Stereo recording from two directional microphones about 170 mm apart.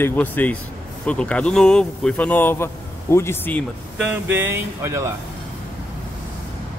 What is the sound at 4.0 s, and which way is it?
Speech, 10° right (ahead or behind).